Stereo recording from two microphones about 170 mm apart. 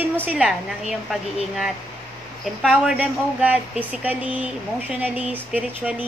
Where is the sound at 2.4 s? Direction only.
5° right (ahead or behind).